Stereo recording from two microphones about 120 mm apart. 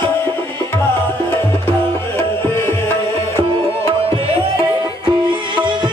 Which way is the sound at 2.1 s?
20° left (ahead or behind).